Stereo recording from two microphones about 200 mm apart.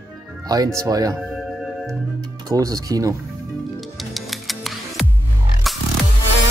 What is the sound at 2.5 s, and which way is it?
Speech, 15° right (ahead or behind).